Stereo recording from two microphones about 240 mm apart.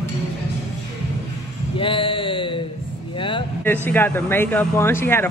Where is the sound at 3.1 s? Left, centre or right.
Left.